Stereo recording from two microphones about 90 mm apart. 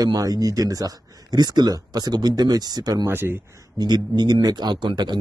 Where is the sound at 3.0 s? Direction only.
25° right (ahead or behind).